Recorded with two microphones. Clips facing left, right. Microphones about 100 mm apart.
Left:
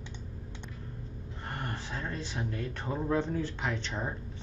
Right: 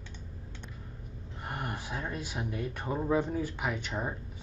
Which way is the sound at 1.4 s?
10° right (ahead or behind).